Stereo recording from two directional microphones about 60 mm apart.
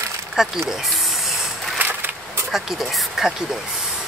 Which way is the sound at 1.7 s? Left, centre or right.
Right.